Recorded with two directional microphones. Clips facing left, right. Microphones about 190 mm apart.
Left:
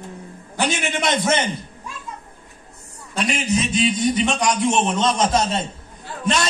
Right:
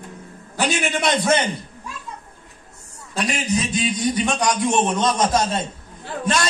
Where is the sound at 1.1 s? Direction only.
20° left (ahead or behind).